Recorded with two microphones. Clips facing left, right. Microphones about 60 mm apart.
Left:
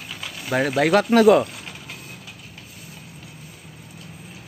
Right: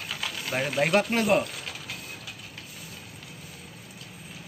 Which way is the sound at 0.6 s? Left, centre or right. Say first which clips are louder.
Left 6 dB; left.